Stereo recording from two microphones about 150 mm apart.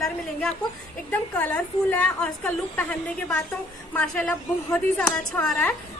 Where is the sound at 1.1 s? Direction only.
10° left (ahead or behind).